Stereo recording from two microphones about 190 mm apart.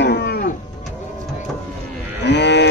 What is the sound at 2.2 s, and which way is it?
Cattle, 65° left (ahead or behind).